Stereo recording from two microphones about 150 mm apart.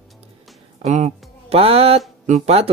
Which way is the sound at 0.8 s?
50° right (ahead or behind).